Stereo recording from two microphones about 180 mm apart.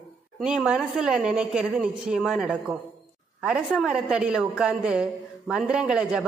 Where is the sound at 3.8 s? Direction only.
5° right (ahead or behind).